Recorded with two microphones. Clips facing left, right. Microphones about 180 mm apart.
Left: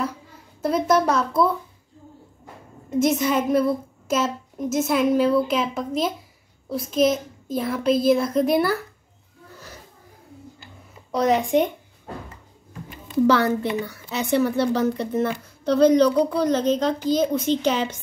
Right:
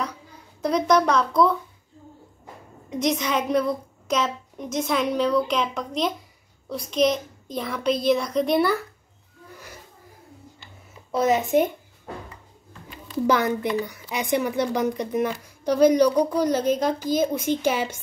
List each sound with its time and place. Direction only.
0.6 s a child's voice: 5° left (ahead or behind)
2.9 s a child's voice: 5° left (ahead or behind)
10.6 s a sound: 5° right (ahead or behind)
13.3 s a woman's voice: 15° right (ahead or behind)